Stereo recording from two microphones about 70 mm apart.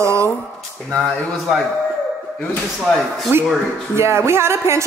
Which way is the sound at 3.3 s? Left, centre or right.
Right.